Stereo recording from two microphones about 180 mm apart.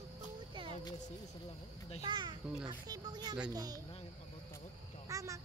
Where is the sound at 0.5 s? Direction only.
30° right (ahead or behind).